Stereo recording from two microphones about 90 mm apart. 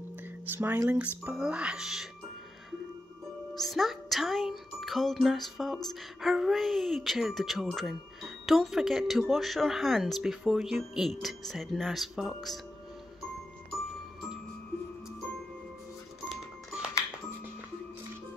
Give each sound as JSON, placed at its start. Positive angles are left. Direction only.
{"t": 0.5, "sound": "speech", "side_deg": -25}
{"t": 3.5, "sound": "music", "side_deg": 0}